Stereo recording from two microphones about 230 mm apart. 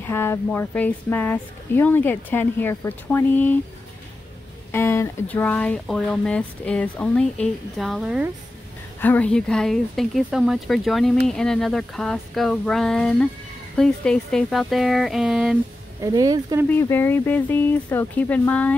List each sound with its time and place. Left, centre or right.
0.0 s speech: centre
4.7 s speech: centre
16.0 s speech: centre
16.6 s speech: centre